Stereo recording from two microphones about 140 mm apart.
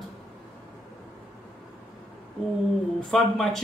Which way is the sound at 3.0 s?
Centre (ahead or behind).